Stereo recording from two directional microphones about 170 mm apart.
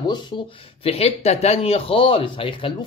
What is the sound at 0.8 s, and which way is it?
Speech, 35° left (ahead or behind).